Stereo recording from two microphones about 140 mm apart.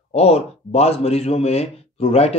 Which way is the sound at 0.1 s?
45° left (ahead or behind).